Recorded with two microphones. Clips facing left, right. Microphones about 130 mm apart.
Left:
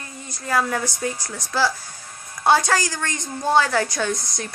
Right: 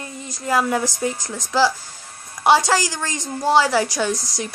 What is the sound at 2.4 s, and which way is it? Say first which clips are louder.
A woman's voice: right 2 dB; 15° right (ahead or behind).